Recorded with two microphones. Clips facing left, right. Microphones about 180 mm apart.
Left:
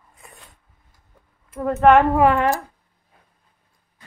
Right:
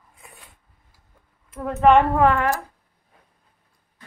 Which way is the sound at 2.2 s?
20° left (ahead or behind).